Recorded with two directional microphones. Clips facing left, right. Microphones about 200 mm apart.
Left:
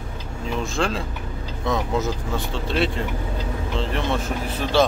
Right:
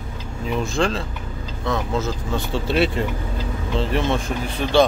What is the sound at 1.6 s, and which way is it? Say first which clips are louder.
Speech: even; 15° left (ahead or behind).